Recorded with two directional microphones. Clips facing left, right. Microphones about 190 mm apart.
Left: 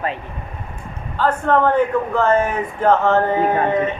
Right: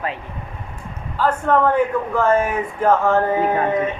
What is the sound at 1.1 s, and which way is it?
A woman's voice, 5° right (ahead or behind).